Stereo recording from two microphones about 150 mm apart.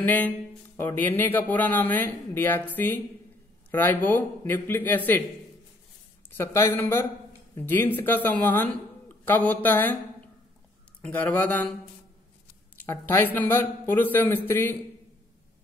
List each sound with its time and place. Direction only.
0.0 s speech: 10° left (ahead or behind)
6.3 s speech: 20° left (ahead or behind)
11.0 s speech: 10° left (ahead or behind)
12.7 s speech: 15° left (ahead or behind)